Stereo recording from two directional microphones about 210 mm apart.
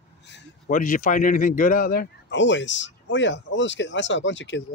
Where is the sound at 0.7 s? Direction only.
40° left (ahead or behind).